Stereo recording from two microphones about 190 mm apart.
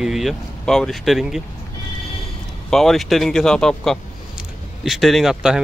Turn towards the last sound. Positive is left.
turn(degrees=-5)  # may be behind; listen again after turning